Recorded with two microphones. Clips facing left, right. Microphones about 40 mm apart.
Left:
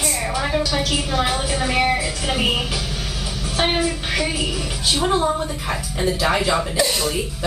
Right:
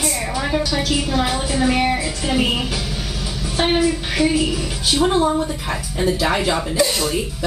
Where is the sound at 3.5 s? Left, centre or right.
Centre.